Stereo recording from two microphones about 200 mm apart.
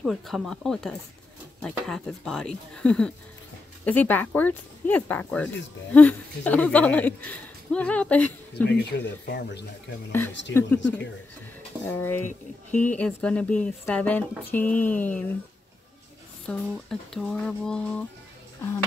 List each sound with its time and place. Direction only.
0.0 s speech: centre (ahead or behind)
8.6 s speech: 55° left (ahead or behind)
11.8 s speech: 10° left (ahead or behind)
16.4 s speech: centre (ahead or behind)